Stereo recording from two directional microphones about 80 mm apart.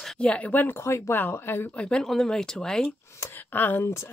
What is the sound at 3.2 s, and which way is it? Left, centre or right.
Speech, left.